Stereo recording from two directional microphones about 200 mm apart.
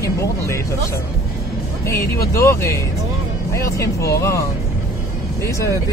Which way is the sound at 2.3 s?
15° left (ahead or behind).